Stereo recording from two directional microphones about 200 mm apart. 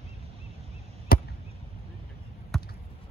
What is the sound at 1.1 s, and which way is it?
Chop, 45° left (ahead or behind).